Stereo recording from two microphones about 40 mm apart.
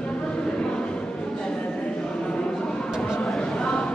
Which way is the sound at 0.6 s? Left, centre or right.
Left.